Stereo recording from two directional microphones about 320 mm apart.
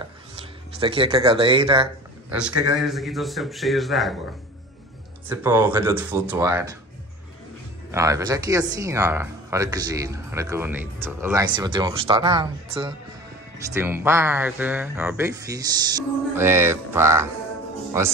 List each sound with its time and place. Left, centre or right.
0.0 s a sound: centre
2.3 s speech: centre
5.3 s speech: centre
7.9 s speech: centre